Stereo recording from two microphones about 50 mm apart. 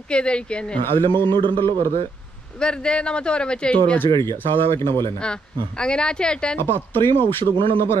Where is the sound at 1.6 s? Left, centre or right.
Left.